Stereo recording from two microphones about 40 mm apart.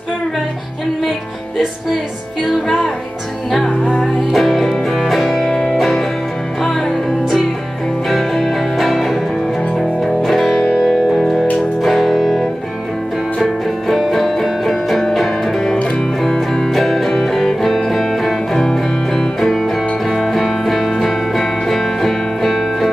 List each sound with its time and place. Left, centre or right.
4.0 s music: centre
8.2 s music: centre
13.4 s music: centre
18.6 s music: centre
19.4 s music: centre